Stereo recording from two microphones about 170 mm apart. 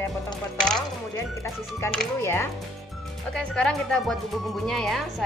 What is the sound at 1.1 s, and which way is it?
Music, 20° left (ahead or behind).